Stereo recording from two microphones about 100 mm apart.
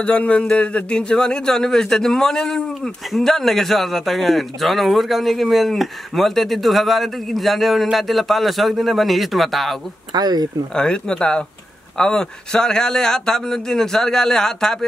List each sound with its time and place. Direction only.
0.0 s speech: 10° left (ahead or behind)
10.1 s speech: 40° right (ahead or behind)
10.7 s speech: 10° left (ahead or behind)